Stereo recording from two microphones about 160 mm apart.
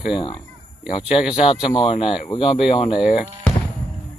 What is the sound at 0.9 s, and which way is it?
Speech, 35° left (ahead or behind).